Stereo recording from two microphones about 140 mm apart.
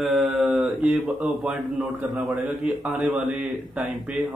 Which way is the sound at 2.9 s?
5° right (ahead or behind).